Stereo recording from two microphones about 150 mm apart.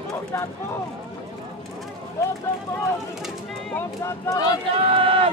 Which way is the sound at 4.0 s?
20° left (ahead or behind).